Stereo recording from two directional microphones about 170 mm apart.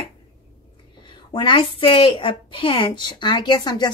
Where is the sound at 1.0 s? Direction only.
25° left (ahead or behind).